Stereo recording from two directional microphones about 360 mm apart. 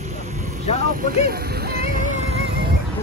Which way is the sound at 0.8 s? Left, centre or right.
Right.